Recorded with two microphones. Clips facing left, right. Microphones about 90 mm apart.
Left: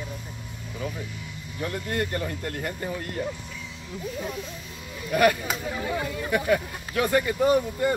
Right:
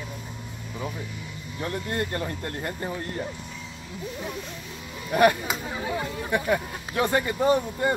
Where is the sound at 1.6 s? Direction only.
30° right (ahead or behind).